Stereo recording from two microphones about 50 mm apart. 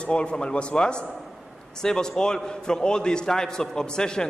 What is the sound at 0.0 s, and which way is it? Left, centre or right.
A man's voice, left.